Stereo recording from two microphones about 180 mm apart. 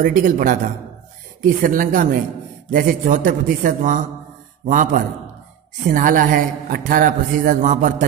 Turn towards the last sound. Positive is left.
turn(degrees=-45)  # may be behind; listen again after turning